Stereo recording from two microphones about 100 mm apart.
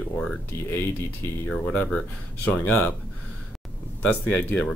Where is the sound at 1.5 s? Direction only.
10° left (ahead or behind).